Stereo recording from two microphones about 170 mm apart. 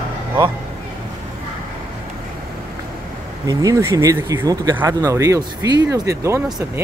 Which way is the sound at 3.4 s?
20° right (ahead or behind).